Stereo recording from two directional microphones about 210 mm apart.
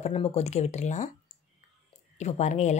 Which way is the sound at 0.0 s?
30° left (ahead or behind).